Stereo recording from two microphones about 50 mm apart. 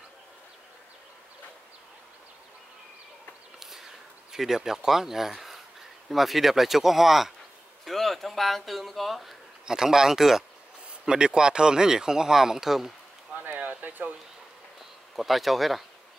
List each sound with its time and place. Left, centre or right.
4.3 s speech: centre
13.3 s a sound: right
15.1 s speech: centre